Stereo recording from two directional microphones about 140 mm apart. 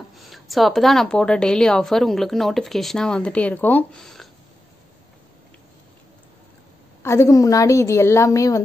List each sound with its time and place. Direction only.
0.1 s speech: centre (ahead or behind)
7.0 s a woman's voice: 20° left (ahead or behind)